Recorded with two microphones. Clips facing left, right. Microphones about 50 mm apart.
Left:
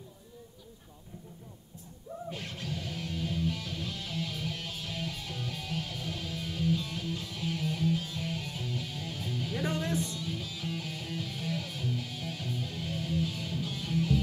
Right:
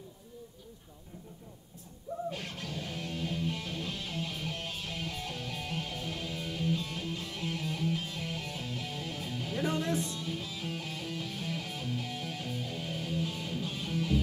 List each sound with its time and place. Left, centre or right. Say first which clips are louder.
2.3 s music: even; right